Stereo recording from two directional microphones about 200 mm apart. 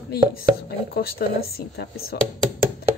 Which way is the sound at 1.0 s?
50° left (ahead or behind).